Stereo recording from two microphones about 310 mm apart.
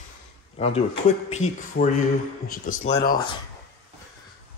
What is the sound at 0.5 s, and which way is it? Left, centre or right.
Speech, centre.